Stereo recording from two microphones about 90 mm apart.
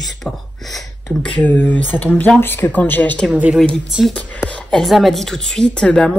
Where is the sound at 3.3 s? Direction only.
15° right (ahead or behind).